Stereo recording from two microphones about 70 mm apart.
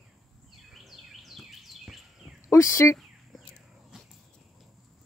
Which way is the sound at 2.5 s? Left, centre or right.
Left.